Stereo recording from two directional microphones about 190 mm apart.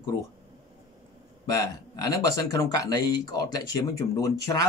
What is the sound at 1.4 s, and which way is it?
Speech, 20° left (ahead or behind).